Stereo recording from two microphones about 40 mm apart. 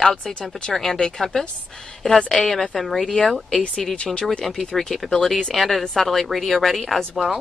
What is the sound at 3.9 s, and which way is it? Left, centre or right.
Speech, left.